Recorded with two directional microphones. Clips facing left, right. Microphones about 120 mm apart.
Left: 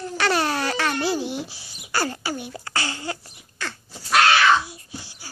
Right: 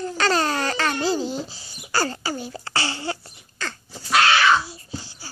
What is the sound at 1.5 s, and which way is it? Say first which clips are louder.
Speech: right 2 dB; 70° left (ahead or behind).